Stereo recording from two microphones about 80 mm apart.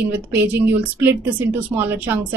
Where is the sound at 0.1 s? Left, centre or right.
Right.